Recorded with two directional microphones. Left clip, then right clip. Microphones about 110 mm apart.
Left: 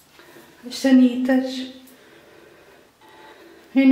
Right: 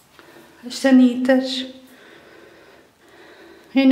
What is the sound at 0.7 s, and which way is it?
Speech, 45° right (ahead or behind).